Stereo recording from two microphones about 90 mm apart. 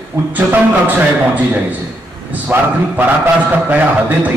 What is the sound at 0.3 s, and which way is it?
A man's voice, 20° right (ahead or behind).